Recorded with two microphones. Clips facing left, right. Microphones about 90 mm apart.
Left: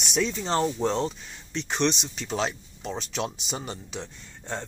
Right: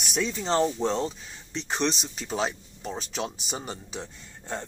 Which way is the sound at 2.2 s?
5° right (ahead or behind).